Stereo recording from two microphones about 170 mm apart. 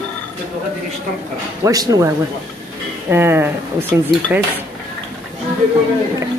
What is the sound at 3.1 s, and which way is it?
Speech, 15° right (ahead or behind).